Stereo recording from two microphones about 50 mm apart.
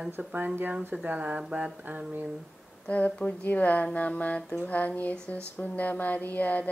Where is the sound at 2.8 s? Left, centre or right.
Left.